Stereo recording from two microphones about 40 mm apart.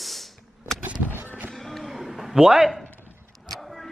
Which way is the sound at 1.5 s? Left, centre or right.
Centre.